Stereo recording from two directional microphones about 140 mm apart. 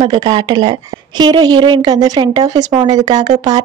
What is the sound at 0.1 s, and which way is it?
Speech, 30° right (ahead or behind).